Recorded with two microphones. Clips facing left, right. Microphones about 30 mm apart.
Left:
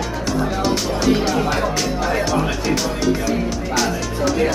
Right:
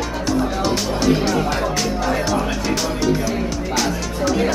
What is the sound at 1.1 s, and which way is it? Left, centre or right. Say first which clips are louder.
Music: even; centre.